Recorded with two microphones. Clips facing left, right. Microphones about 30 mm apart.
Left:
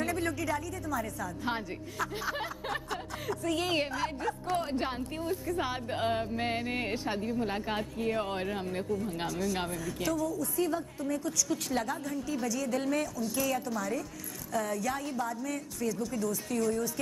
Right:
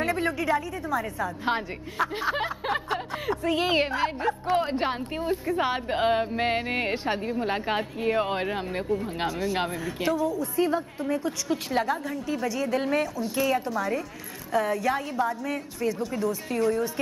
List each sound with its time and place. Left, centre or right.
0.0 s a woman's voice: right